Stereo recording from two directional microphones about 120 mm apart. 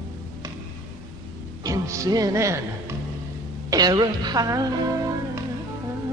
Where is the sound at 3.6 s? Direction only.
35° right (ahead or behind).